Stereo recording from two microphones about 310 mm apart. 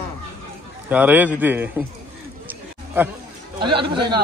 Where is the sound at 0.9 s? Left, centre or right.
Centre.